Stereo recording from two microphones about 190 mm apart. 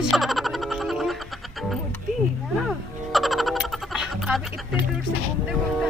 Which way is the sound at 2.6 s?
Centre (ahead or behind).